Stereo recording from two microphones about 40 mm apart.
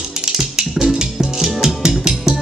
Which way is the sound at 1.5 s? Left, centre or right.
Centre.